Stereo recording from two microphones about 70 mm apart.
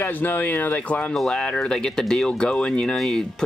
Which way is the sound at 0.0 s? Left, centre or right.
Left.